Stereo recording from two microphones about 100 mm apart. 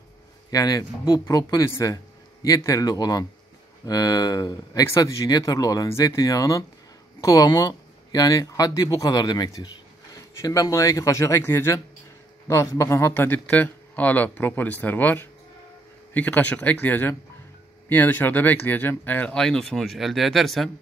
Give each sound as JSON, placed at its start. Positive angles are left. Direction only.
{"t": 0.5, "sound": "speech", "side_deg": 35}
{"t": 13.1, "sound": "speech", "side_deg": 20}